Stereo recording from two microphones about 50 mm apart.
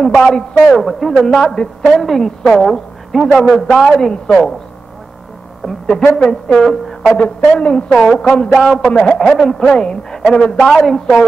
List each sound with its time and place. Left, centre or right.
0.0 s a man's voice: centre
6.1 s a man's voice: centre
7.2 s a man's voice: left
9.2 s a man's voice: centre